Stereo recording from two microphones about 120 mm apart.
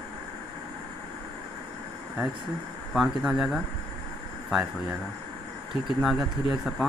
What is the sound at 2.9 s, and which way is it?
Speech, centre (ahead or behind).